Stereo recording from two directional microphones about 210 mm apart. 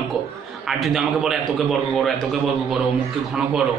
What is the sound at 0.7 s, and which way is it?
Speech, centre (ahead or behind).